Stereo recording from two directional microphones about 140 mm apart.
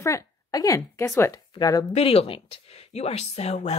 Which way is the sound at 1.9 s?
45° left (ahead or behind).